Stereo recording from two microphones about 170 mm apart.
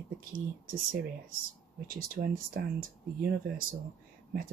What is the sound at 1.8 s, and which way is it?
Speech, 60° right (ahead or behind).